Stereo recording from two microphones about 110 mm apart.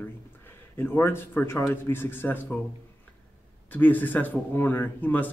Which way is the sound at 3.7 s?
15° left (ahead or behind).